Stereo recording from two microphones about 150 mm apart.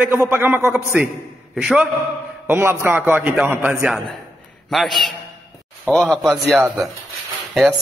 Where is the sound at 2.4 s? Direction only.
15° right (ahead or behind).